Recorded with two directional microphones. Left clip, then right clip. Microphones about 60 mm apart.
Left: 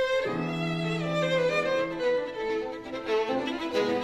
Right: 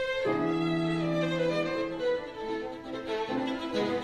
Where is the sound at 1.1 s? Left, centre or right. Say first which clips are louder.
Left 6 dB; right.